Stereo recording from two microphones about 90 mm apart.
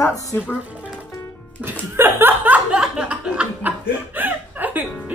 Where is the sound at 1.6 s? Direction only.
20° right (ahead or behind).